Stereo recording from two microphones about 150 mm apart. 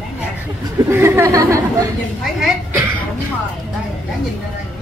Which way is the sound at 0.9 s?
15° right (ahead or behind).